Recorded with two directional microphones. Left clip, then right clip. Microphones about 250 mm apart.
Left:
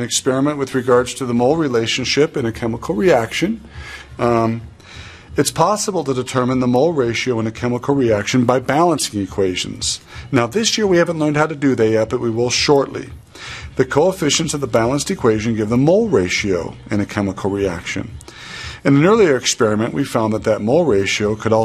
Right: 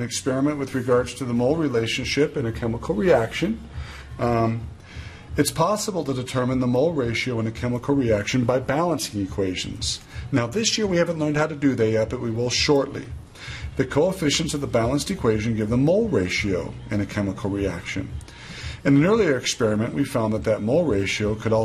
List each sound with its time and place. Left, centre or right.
0.0 s a man's voice: left